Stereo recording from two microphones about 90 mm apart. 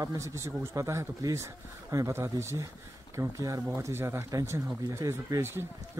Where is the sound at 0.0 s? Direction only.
40° right (ahead or behind).